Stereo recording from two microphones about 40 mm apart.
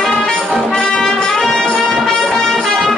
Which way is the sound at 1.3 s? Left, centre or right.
Centre.